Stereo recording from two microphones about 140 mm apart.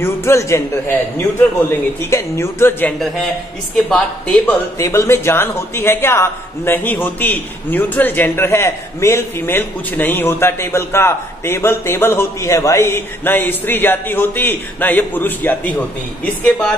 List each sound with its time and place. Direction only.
0.0 s a man's voice: 20° left (ahead or behind)
3.7 s speech: 5° left (ahead or behind)
4.7 s a man's voice: 20° left (ahead or behind)